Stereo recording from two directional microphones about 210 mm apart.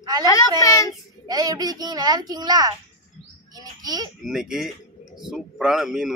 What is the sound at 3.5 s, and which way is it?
Bird, 20° right (ahead or behind).